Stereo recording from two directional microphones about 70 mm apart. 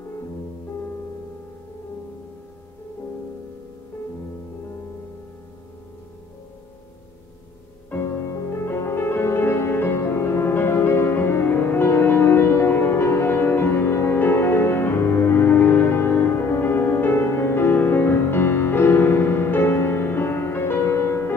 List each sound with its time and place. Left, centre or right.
7.9 s music: left